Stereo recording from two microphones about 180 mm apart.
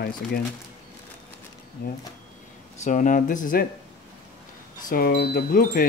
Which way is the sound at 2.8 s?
45° left (ahead or behind).